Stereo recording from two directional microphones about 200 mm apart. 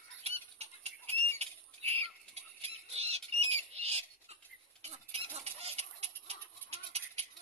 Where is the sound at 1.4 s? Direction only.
30° right (ahead or behind).